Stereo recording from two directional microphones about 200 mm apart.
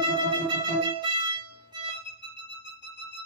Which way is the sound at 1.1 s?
20° right (ahead or behind).